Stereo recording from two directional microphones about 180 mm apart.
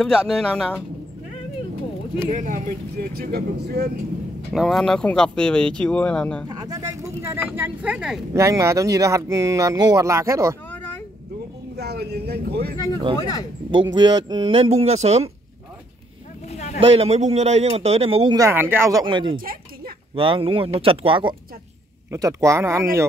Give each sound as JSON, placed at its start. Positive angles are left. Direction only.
{"t": 0.0, "sound": "speech", "side_deg": 0}
{"t": 2.2, "sound": "speech", "side_deg": -45}
{"t": 4.5, "sound": "speech", "side_deg": 0}
{"t": 6.5, "sound": "speech", "side_deg": -20}
{"t": 8.4, "sound": "speech", "side_deg": -15}
{"t": 11.7, "sound": "speech", "side_deg": -65}
{"t": 12.7, "sound": "speech", "side_deg": 20}
{"t": 13.9, "sound": "speech", "side_deg": -25}
{"t": 16.5, "sound": "a sound", "side_deg": 40}
{"t": 16.8, "sound": "speech", "side_deg": -35}
{"t": 19.0, "sound": "speech", "side_deg": -25}
{"t": 22.1, "sound": "speech", "side_deg": -15}